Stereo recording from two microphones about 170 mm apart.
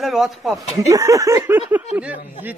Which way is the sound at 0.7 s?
20° right (ahead or behind).